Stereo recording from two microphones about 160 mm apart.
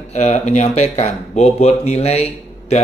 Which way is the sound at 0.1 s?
45° left (ahead or behind).